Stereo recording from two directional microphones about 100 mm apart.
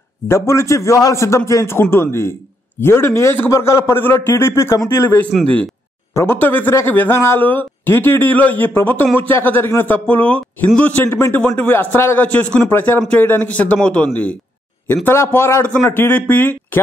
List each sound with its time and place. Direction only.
0.3 s speech: 25° left (ahead or behind); by 11.0 s 10° left (ahead or behind)
11.1 s speech: 25° left (ahead or behind)
15.0 s speech: 25° left (ahead or behind)